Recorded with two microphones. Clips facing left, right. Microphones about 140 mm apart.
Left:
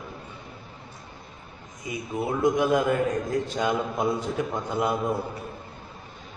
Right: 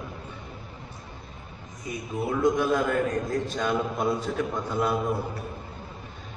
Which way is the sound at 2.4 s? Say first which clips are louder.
Left 2 dB; 15° left (ahead or behind).